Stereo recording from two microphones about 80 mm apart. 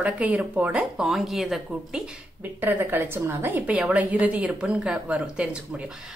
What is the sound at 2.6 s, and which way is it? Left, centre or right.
A woman's voice, right.